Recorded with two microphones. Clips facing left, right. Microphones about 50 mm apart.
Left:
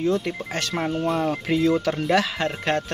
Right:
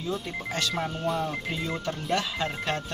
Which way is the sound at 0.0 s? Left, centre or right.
Left.